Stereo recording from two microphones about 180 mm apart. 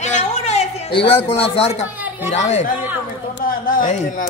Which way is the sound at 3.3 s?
50° left (ahead or behind).